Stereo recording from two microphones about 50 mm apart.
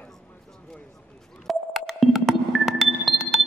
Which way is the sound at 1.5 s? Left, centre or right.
Centre.